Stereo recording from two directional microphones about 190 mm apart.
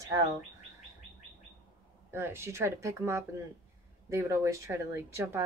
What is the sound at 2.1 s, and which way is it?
Speech, 10° right (ahead or behind).